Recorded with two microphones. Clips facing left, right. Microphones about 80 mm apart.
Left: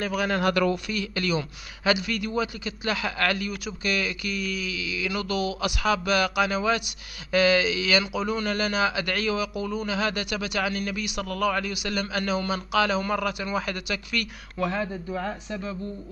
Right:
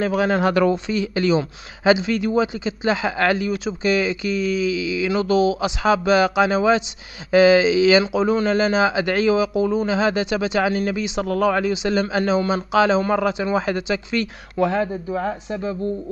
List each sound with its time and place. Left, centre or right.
0.0 s speech: right